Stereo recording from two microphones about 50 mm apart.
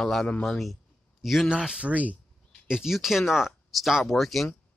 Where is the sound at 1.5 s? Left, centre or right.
Centre.